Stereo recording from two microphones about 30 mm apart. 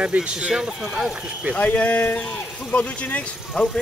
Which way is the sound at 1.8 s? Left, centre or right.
Left.